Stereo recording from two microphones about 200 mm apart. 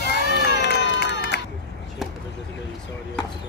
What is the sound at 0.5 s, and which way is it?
Run, 60° left (ahead or behind).